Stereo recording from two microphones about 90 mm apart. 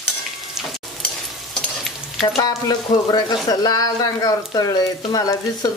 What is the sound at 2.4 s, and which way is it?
Speech, 50° left (ahead or behind).